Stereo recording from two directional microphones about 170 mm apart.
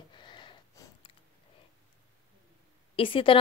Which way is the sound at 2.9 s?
30° left (ahead or behind).